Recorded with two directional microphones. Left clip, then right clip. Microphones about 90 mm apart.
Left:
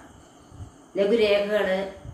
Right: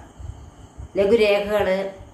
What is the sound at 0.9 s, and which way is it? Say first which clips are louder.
Speech: right 4 dB; 15° right (ahead or behind).